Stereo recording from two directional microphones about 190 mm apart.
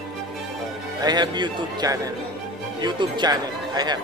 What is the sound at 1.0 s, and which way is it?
Speech, 20° right (ahead or behind).